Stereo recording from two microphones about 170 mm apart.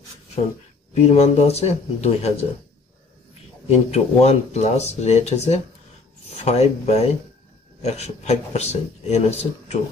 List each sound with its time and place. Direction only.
0.9 s speech: 40° left (ahead or behind)
3.7 s speech: 40° left (ahead or behind)